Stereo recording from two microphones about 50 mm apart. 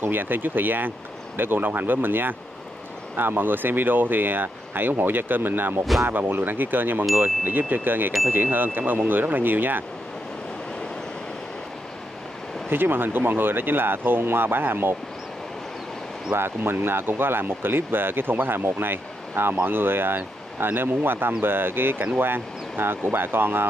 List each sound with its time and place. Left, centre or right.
0.0 s speech: right
12.6 s speech: right
16.3 s speech: right